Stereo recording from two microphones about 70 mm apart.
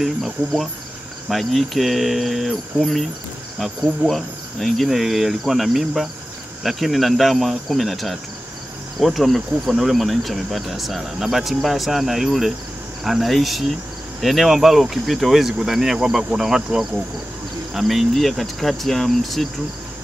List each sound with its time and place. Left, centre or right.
0.0 s speech: centre